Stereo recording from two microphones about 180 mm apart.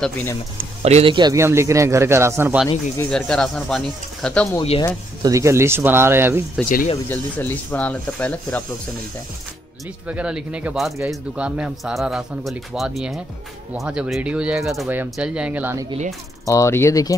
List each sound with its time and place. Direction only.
0.0 s speech: 10° left (ahead or behind)
0.8 s a man's voice: 35° right (ahead or behind); by 2.6 s 15° right (ahead or behind)
3.1 s a man's voice: 5° left (ahead or behind)
4.6 s speech: 30° left (ahead or behind)
5.2 s a man's voice: 15° right (ahead or behind)
7.1 s speech: 10° left (ahead or behind)
10.0 s a man's voice: 5° right (ahead or behind)
16.4 s speech: 15° left (ahead or behind)